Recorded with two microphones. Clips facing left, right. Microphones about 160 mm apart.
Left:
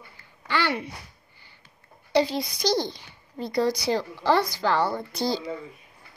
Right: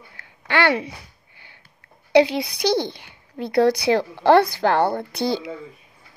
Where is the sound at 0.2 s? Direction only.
65° right (ahead or behind).